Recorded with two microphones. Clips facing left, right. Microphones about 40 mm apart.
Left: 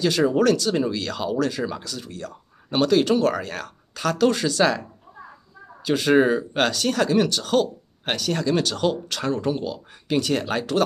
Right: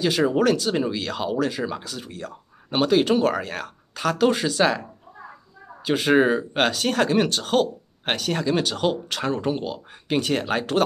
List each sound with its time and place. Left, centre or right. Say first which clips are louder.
0.0 s speech: left 1 dB; centre
5.9 s speech: even; right